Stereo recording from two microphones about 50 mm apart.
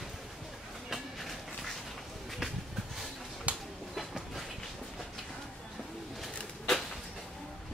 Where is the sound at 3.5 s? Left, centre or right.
Right.